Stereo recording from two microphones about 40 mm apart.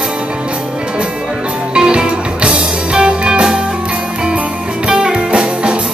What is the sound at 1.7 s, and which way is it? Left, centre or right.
Music, right.